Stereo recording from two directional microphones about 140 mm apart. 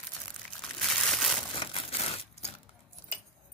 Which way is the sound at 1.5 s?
40° left (ahead or behind).